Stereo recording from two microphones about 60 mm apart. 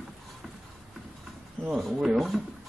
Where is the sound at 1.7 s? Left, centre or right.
Centre.